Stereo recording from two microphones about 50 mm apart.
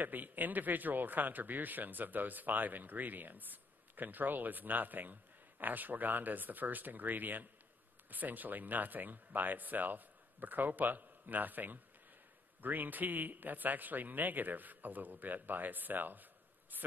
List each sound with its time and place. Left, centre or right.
0.0 s speech: right